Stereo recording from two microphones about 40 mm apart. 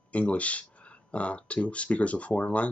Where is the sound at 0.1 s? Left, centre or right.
Left.